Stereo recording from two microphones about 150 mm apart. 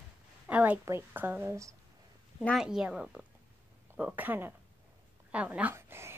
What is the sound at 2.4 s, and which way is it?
A woman's voice, centre (ahead or behind).